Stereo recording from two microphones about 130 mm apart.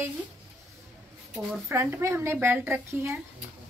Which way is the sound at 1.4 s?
15° right (ahead or behind).